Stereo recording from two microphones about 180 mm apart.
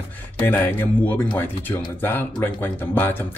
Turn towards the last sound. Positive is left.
turn(degrees=10)  # may be behind; listen again after turning